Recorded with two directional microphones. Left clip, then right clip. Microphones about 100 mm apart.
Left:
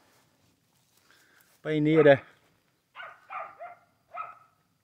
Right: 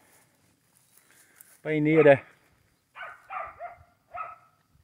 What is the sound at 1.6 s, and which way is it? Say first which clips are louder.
Speech: right 1 dB; 20° left (ahead or behind).